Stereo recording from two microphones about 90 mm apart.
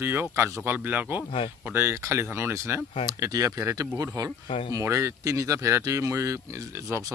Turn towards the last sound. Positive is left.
turn(degrees=-35)  # may be behind; listen again after turning